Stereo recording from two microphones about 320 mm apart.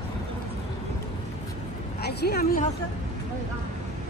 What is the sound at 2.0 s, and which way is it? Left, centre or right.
Speech, left.